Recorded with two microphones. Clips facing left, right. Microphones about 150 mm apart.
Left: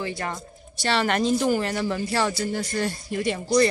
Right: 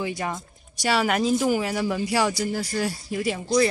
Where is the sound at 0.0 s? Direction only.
15° right (ahead or behind).